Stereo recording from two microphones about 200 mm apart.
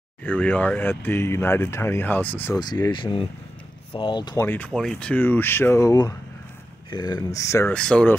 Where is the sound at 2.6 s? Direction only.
20° left (ahead or behind).